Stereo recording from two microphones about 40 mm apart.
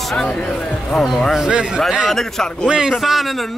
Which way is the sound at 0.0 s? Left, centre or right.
Centre.